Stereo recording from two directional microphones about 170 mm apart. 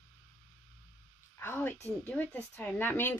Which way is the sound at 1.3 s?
15° left (ahead or behind).